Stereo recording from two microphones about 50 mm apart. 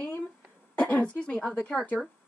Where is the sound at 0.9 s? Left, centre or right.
Left.